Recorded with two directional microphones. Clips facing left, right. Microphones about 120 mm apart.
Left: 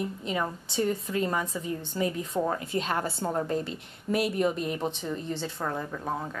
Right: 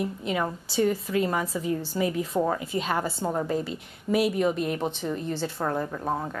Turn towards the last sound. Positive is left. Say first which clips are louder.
# right 3 dB
turn(degrees=-15)  # may be behind; listen again after turning